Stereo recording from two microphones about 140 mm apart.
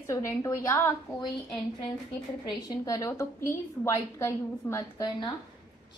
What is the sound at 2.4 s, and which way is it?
A woman's voice, 30° left (ahead or behind).